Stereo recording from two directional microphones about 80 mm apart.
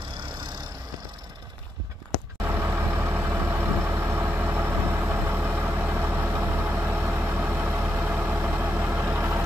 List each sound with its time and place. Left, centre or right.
2.4 s vehicle: right